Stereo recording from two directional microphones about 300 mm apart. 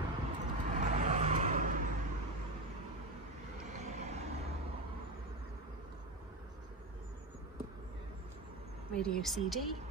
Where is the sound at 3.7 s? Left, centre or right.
Right.